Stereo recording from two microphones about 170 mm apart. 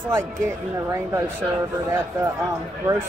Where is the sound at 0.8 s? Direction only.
15° right (ahead or behind).